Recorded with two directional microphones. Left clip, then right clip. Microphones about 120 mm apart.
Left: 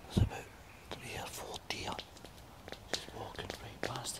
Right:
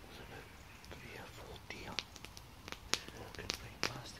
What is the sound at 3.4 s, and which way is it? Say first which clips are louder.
Whispering: right 2 dB; 10° left (ahead or behind).